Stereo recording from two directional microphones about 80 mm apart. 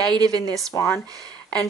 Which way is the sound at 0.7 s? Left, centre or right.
Left.